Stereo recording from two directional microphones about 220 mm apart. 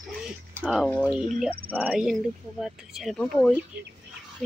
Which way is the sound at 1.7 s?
5° right (ahead or behind).